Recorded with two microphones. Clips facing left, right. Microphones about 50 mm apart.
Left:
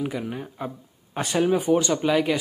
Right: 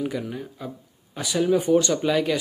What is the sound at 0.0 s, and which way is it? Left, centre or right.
Speech, centre.